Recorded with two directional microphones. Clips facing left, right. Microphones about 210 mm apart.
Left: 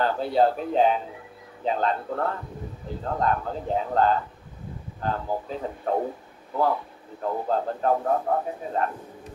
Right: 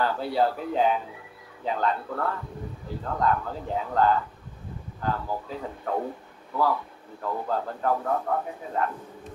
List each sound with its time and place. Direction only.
0.0 s a man's voice: 20° left (ahead or behind)